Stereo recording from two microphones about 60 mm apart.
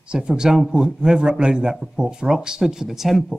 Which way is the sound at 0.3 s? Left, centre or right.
Centre.